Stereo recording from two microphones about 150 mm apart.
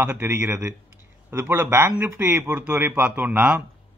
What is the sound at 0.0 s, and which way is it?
A man's voice, 15° right (ahead or behind).